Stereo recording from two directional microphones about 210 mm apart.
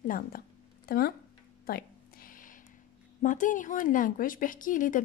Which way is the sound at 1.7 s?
45° left (ahead or behind).